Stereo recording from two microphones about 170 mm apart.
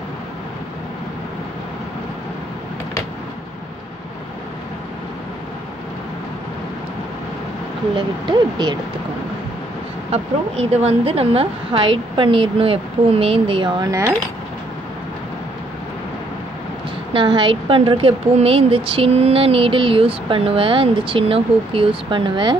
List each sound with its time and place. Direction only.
8.3 s speech: 25° right (ahead or behind)
10.1 s a woman's voice: 40° right (ahead or behind); by 14.1 s 20° right (ahead or behind)
17.1 s a woman's voice: 30° right (ahead or behind)